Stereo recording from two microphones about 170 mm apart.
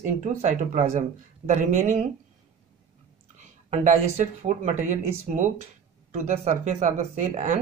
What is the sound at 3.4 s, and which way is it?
Speech, 45° right (ahead or behind).